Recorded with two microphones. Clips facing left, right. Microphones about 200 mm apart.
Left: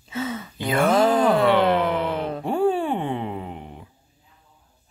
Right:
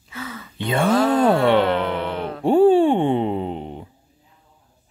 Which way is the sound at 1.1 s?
25° right (ahead or behind).